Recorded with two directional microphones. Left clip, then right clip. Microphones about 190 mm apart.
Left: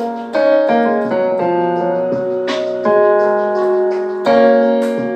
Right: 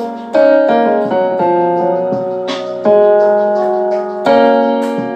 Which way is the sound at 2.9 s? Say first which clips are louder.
Right 4 dB; 25° right (ahead or behind).